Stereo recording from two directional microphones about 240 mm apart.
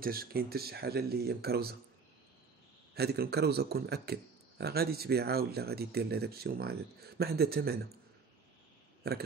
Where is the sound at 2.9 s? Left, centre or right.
Right.